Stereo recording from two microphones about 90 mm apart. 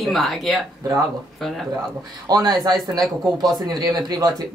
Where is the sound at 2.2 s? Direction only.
45° right (ahead or behind).